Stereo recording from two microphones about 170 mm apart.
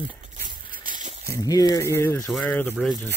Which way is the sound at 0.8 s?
50° right (ahead or behind).